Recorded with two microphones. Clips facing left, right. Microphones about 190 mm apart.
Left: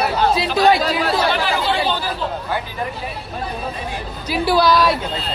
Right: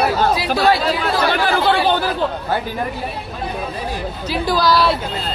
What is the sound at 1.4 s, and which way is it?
Speech, 55° right (ahead or behind).